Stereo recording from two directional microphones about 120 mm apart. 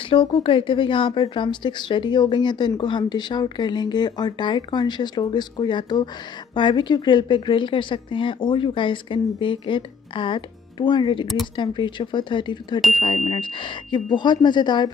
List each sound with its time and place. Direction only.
0.1 s speech: 50° left (ahead or behind)